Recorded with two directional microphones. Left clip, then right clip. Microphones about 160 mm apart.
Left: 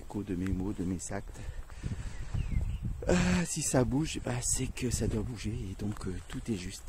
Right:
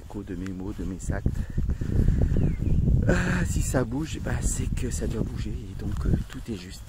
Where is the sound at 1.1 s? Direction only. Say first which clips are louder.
Right 4 dB; 10° left (ahead or behind).